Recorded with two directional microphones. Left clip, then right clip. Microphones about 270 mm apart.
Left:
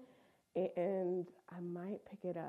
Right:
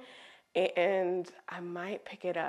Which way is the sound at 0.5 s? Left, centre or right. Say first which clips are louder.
Right 9 dB; centre.